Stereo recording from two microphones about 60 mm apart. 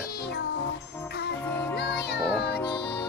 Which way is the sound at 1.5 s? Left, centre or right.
Left.